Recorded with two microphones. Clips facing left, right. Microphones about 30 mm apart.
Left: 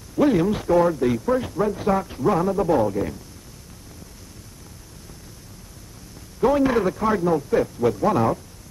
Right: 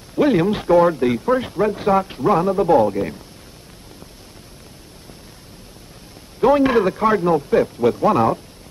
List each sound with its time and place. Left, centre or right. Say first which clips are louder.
0.1 s speech: right 2 dB; right
6.4 s speech: right 4 dB; right